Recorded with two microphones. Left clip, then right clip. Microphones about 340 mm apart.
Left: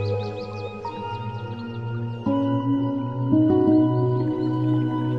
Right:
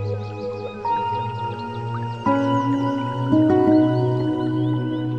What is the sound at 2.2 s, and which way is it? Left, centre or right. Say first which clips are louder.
Music: right 4 dB; right.